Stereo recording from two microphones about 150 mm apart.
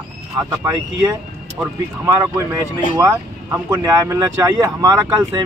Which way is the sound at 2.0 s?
25° right (ahead or behind).